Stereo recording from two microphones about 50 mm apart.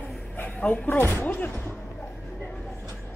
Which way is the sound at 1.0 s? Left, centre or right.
Left.